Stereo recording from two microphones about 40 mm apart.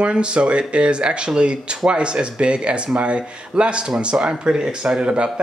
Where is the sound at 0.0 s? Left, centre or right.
Right.